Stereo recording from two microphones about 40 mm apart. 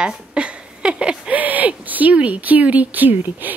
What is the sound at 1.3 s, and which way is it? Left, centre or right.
Speech, right.